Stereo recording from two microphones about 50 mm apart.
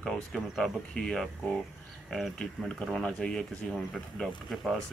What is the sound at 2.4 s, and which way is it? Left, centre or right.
Speech, centre.